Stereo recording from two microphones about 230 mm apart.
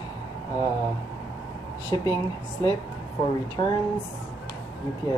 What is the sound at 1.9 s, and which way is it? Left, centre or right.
Speech, centre.